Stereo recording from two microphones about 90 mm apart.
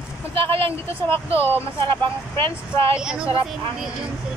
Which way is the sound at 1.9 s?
70° right (ahead or behind).